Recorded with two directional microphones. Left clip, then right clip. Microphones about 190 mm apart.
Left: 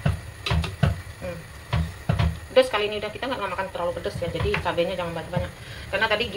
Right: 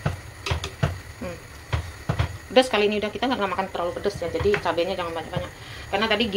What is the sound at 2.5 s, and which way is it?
A woman's voice, 60° right (ahead or behind).